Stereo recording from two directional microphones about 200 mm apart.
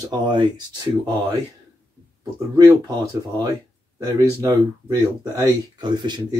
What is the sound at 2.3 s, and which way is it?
Speech, 20° right (ahead or behind).